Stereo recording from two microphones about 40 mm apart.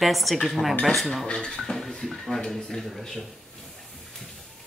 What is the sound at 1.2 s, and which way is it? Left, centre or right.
Speech, centre.